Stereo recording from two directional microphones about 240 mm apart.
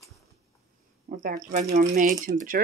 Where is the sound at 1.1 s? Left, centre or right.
Right.